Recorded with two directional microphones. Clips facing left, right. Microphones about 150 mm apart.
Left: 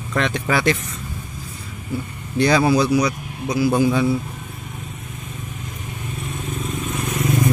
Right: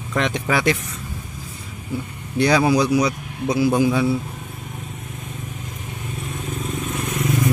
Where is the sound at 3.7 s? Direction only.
10° right (ahead or behind).